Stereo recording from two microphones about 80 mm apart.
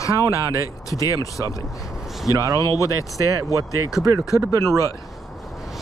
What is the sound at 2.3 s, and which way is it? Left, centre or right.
Speech, right.